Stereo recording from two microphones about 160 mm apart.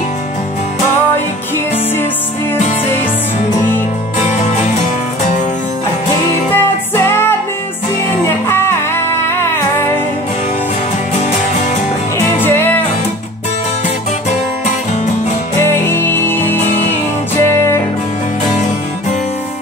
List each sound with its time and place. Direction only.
6.5 s music: 15° left (ahead or behind)
8.5 s music: 15° left (ahead or behind)
12.2 s music: 15° left (ahead or behind)
15.6 s music: 15° left (ahead or behind)
16.6 s music: 40° left (ahead or behind)
17.4 s music: 15° left (ahead or behind)